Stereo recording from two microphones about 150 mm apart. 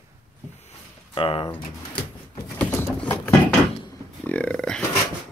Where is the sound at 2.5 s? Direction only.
10° left (ahead or behind).